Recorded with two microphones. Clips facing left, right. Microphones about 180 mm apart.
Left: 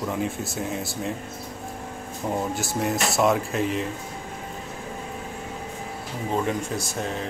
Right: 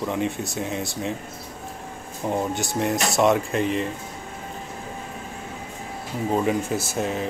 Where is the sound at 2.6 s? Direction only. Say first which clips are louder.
Right 1 dB; centre (ahead or behind).